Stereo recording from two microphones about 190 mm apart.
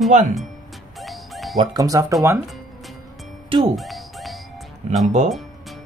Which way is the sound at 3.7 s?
Centre (ahead or behind).